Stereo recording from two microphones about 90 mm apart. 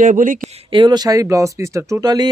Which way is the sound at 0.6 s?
60° right (ahead or behind).